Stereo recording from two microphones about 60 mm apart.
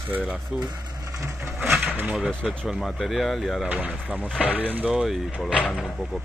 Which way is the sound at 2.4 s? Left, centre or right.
Centre.